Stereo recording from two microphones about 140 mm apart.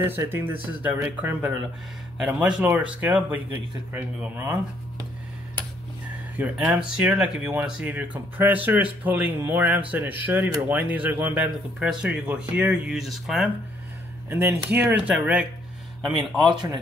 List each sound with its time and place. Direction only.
0.0 s speech: 15° right (ahead or behind)
6.3 s speech: 10° right (ahead or behind)
14.3 s speech: 15° right (ahead or behind)
16.4 s speech: 35° right (ahead or behind)